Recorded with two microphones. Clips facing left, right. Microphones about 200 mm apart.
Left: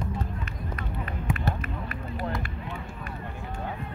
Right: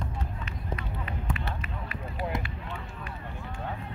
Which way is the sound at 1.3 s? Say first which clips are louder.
Left 7 dB; 45° left (ahead or behind).